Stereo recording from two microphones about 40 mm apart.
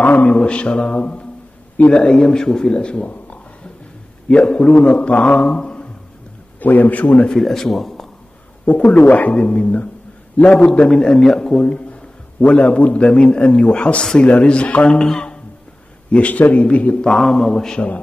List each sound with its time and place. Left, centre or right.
0.0 s mantra: left
0.3 s mantra: left
1.8 s a man's voice: left
3.1 s a sound: left
4.3 s a man's voice: left
6.6 s a man's voice: left
7.2 s speech: centre
8.7 s a man's voice: left
9.0 s a man's voice: left
9.3 s a man's voice: left
11.2 s a sound: centre
11.6 s a man's voice: left
16.1 s a man's voice: left
17.2 s a man's voice: centre